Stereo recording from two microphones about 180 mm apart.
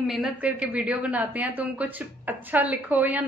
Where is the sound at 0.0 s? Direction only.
Centre (ahead or behind).